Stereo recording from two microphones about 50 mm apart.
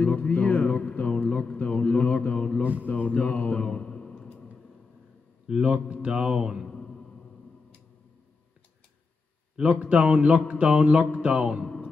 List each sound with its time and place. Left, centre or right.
0.0 s speech: left
2.6 s speech: right
2.9 s a man's voice: left; by 4.3 s centre
5.5 s a man's voice: centre
6.0 s music: centre
6.7 s a sound: centre
9.6 s a man's voice: right